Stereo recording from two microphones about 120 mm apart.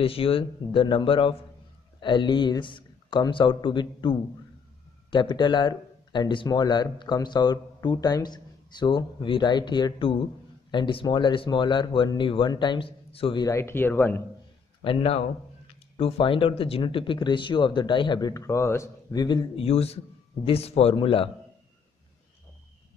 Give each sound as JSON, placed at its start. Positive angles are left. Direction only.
{"t": 0.0, "sound": "speech", "side_deg": 50}
{"t": 13.4, "sound": "speech", "side_deg": 25}
{"t": 14.8, "sound": "speech", "side_deg": 45}
{"t": 18.3, "sound": "speech", "side_deg": 25}
{"t": 19.1, "sound": "speech", "side_deg": 35}
{"t": 19.6, "sound": "a man's voice", "side_deg": 60}